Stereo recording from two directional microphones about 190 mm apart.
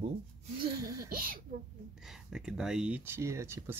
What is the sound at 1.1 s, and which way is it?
Speech, 50° right (ahead or behind).